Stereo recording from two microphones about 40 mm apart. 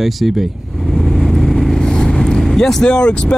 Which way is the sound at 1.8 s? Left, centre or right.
Centre.